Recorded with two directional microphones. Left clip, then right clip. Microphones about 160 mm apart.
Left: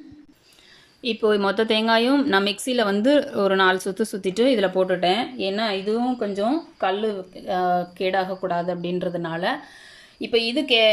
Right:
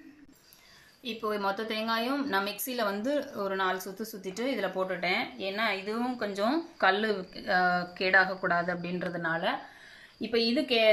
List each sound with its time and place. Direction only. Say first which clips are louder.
1.0 s a woman's voice: left 10 dB; 60° left (ahead or behind); by 6.5 s 35° left (ahead or behind)
6.5 s a woman's voice: left 3 dB; 15° left (ahead or behind)